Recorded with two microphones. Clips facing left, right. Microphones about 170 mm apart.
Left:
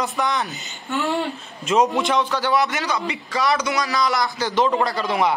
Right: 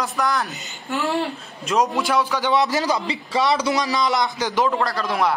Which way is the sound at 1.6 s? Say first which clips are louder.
Left 2 dB; centre (ahead or behind).